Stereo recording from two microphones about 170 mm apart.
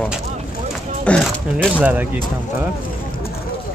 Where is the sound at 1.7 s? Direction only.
10° right (ahead or behind).